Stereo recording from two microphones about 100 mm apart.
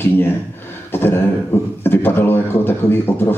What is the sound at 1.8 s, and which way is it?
Speech, 20° left (ahead or behind).